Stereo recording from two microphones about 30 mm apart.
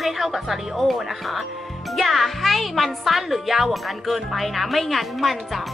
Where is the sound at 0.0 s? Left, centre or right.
Centre.